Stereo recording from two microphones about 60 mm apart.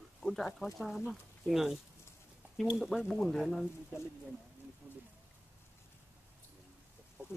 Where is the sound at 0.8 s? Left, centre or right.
Centre.